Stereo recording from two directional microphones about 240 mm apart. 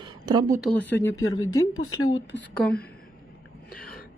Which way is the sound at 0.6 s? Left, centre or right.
Centre.